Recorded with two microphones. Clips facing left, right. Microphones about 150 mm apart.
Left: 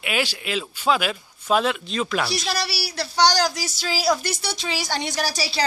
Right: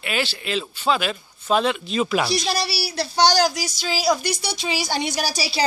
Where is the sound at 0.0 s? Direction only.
10° left (ahead or behind).